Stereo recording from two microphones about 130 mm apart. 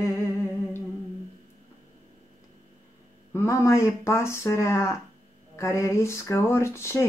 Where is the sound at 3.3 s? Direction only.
20° left (ahead or behind).